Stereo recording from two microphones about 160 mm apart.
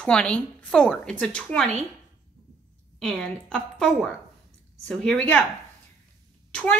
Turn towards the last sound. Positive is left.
turn(degrees=5)  # may be behind; listen again after turning